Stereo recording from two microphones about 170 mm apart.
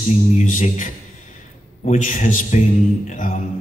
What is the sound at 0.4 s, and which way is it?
Speech, 50° left (ahead or behind).